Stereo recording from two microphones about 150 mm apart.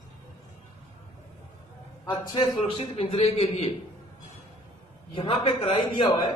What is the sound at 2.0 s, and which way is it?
A man's voice, 30° left (ahead or behind).